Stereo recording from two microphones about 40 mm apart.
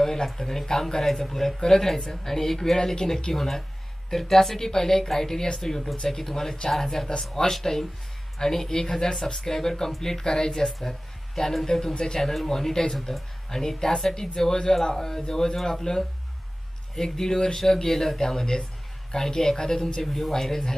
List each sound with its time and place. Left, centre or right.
0.0 s speech: centre
3.3 s speech: centre
12.2 s speech: centre